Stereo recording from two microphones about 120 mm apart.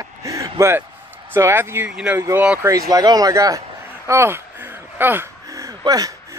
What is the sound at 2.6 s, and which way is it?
Speech, 30° right (ahead or behind).